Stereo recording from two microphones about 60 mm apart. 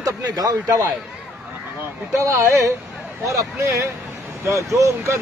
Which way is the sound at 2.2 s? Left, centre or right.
Right.